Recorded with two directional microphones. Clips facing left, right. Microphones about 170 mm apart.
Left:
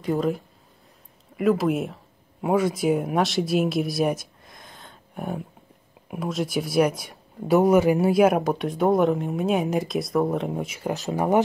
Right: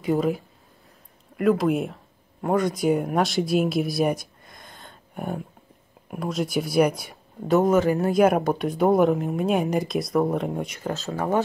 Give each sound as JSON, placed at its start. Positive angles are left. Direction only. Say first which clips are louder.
{"t": 0.0, "sound": "speech", "louder": "right 1 dB", "side_deg": 0}
{"t": 7.5, "sound": "speech", "louder": "left 2 dB", "side_deg": 10}
{"t": 10.9, "sound": "speech", "louder": "left 3 dB", "side_deg": 15}